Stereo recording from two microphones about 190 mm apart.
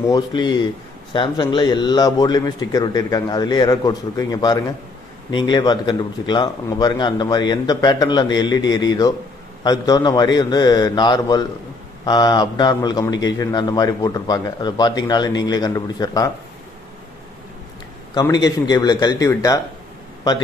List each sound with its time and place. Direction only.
0.1 s a man's voice: 25° left (ahead or behind)
18.1 s a man's voice: 20° left (ahead or behind)